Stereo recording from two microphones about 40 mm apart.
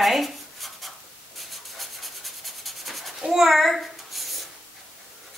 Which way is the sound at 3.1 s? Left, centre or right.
Centre.